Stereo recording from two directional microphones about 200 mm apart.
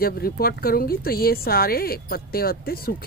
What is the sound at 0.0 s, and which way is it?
Speech, 50° left (ahead or behind).